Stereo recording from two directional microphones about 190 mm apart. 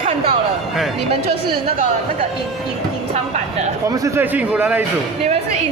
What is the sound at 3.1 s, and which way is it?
Speech, 40° right (ahead or behind).